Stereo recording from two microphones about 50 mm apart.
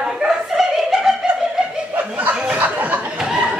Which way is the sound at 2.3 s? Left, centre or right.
Centre.